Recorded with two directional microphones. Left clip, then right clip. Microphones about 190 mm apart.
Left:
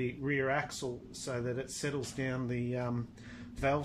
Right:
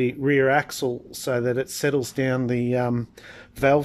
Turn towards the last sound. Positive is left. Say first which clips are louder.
# right 13 dB
turn(degrees=-60)  # may be behind; listen again after turning